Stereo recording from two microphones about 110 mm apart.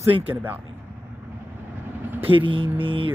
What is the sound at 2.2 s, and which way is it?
Speech, 55° right (ahead or behind).